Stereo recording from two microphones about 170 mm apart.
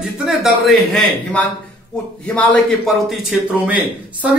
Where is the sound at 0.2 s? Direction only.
Centre (ahead or behind).